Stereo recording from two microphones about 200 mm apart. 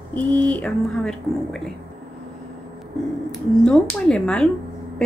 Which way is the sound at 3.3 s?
5° left (ahead or behind).